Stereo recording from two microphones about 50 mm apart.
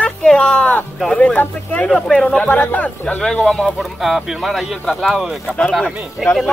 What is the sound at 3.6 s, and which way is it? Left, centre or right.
Speech, centre.